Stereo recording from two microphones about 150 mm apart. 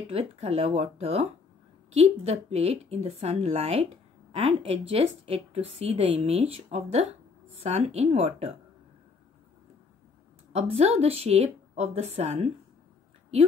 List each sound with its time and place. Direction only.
0.1 s a woman's voice: 45° right (ahead or behind)
10.5 s a woman's voice: 45° right (ahead or behind)